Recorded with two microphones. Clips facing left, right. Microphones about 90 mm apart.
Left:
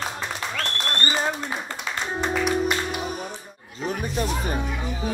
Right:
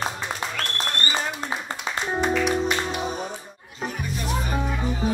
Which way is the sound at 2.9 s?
25° right (ahead or behind).